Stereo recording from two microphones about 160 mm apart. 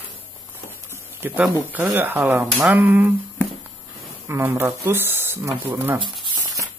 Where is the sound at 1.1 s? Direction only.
10° right (ahead or behind).